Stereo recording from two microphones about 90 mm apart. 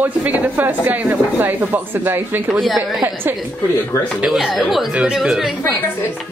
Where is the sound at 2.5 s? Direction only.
Centre (ahead or behind).